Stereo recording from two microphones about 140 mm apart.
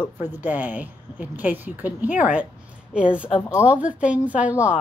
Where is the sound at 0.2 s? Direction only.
10° right (ahead or behind).